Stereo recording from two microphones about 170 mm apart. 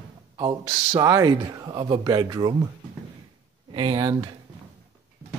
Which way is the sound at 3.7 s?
30° right (ahead or behind).